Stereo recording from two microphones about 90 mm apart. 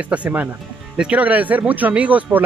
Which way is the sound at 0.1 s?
15° right (ahead or behind).